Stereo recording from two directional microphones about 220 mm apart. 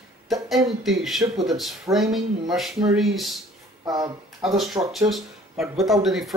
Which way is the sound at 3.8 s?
15° right (ahead or behind).